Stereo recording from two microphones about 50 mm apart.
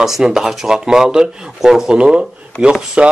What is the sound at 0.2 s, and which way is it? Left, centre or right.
Speech, centre.